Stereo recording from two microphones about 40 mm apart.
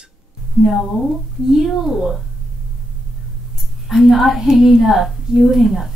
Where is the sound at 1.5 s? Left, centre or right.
Centre.